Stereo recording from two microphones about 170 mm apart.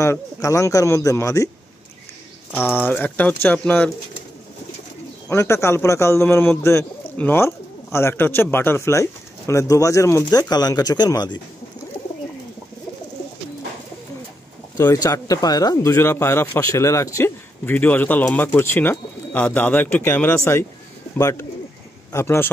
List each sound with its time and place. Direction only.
0.0 s speech: 20° left (ahead or behind)
2.5 s speech: 10° left (ahead or behind)
5.3 s speech: 15° left (ahead or behind)
14.8 s speech: 20° left (ahead or behind)